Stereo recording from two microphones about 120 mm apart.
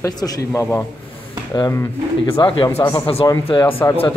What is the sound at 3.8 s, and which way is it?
Speech, 30° left (ahead or behind).